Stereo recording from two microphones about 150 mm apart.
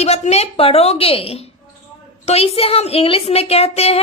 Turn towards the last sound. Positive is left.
turn(degrees=40)  # may be behind; listen again after turning